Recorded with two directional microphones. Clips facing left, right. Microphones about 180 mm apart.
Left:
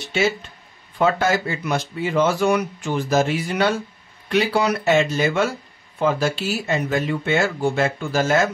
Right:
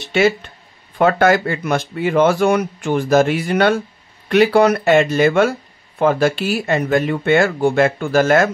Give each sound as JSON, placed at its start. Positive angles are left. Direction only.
{"t": 0.1, "sound": "speech", "side_deg": -60}